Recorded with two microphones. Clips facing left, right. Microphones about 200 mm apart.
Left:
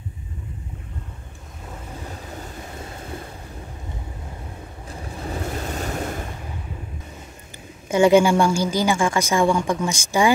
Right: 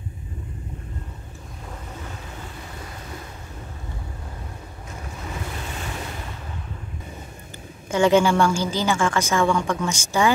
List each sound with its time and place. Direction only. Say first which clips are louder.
5.2 s waves: left 6 dB; 40° left (ahead or behind)
7.9 s a woman's voice: left 3 dB; 10° left (ahead or behind)